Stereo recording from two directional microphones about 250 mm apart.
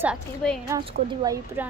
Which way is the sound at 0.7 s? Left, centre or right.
Right.